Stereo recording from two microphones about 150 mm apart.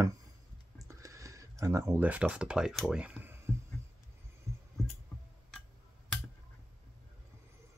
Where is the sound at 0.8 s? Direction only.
20° right (ahead or behind).